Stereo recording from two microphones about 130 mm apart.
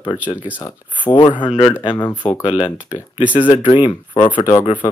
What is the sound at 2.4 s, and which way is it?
Speech, 40° left (ahead or behind).